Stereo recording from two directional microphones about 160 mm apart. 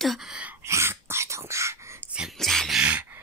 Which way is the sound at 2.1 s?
Centre (ahead or behind).